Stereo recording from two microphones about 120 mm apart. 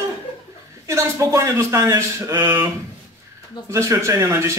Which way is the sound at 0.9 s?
25° right (ahead or behind).